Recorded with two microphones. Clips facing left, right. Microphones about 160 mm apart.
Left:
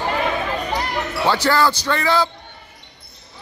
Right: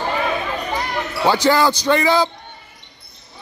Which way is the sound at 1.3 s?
15° right (ahead or behind).